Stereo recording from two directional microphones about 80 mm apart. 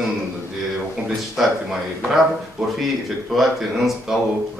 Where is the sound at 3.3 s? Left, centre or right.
Centre.